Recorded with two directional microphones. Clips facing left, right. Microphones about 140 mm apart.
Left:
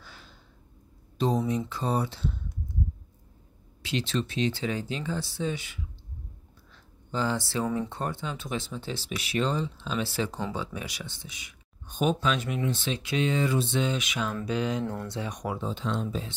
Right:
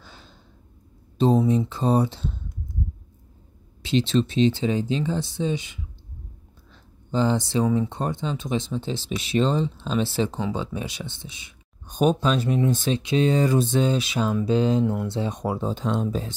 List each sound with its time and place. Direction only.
0.0 s a sound: 25° right (ahead or behind)
1.1 s speech: 25° right (ahead or behind)
3.8 s speech: 25° right (ahead or behind)
7.1 s speech: 20° right (ahead or behind)
11.9 s speech: 40° right (ahead or behind)
12.9 s speech: 30° right (ahead or behind)